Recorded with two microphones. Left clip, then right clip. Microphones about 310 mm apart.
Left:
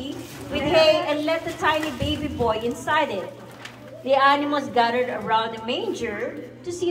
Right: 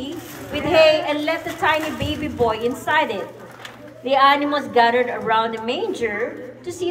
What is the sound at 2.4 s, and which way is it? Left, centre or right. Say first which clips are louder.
A woman's voice: right 3 dB; right.